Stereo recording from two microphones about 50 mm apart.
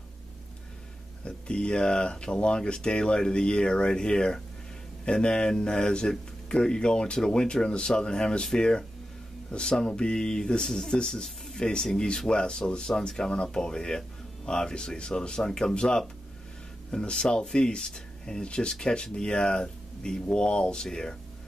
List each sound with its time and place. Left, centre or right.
1.2 s speech: centre